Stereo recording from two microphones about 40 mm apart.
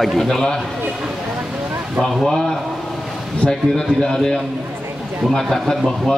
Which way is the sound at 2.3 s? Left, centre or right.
Centre.